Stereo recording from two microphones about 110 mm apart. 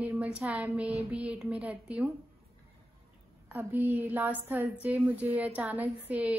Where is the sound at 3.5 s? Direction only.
15° right (ahead or behind).